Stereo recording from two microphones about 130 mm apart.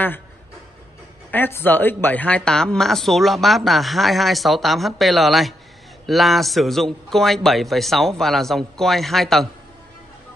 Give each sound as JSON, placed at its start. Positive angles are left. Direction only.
{"t": 1.3, "sound": "speech", "side_deg": 15}